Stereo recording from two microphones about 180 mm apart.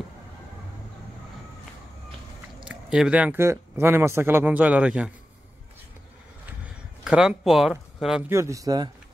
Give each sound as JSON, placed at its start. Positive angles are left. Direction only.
{"t": 2.6, "sound": "speech", "side_deg": -5}
{"t": 7.1, "sound": "speech", "side_deg": -5}
{"t": 8.3, "sound": "speech", "side_deg": -15}